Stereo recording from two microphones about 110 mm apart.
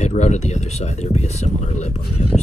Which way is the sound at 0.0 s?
90° left.